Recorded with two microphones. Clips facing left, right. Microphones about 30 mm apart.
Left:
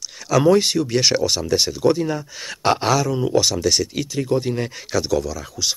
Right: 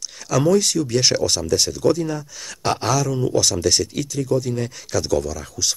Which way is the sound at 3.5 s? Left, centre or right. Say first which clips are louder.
Even; centre.